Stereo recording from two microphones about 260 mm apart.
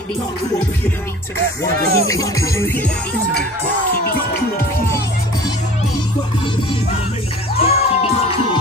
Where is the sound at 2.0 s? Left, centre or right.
Centre.